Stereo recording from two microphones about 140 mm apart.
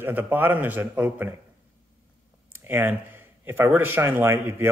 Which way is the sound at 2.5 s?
15° right (ahead or behind).